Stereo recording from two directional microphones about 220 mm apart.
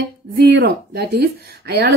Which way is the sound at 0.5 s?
50° right (ahead or behind).